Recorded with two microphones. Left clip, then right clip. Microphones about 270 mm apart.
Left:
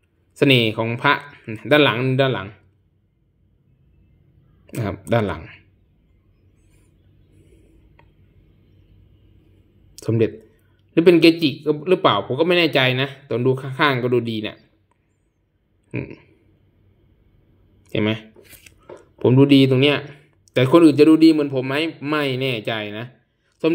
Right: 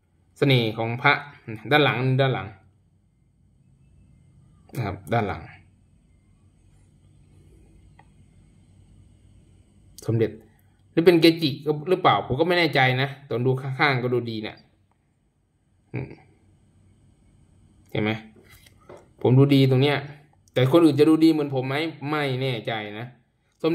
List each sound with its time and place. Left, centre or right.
0.4 s a man's voice: centre
4.6 s a man's voice: centre
9.9 s a man's voice: centre
15.9 s speech: centre
17.9 s a man's voice: centre